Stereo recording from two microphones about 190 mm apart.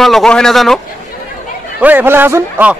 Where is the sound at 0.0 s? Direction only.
Centre (ahead or behind).